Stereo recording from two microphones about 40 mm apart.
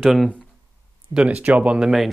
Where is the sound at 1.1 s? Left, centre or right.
Right.